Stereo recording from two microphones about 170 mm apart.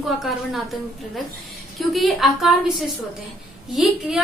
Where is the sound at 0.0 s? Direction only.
Centre (ahead or behind).